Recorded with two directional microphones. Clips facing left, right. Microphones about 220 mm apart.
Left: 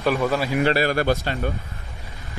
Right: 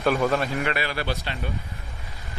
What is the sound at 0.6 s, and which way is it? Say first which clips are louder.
Speech: left 8 dB; 40° left (ahead or behind).